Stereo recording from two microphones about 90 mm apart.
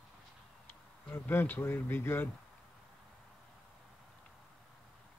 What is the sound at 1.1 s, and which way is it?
Speech, 25° left (ahead or behind).